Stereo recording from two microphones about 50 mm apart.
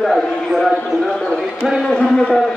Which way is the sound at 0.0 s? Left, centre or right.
Centre.